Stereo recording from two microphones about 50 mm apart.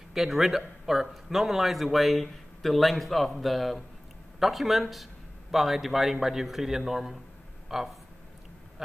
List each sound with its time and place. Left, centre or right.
0.1 s a man's voice: centre